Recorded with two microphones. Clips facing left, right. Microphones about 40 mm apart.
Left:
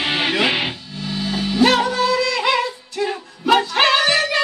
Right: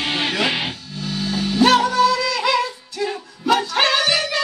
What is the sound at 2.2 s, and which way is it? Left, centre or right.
Music, centre.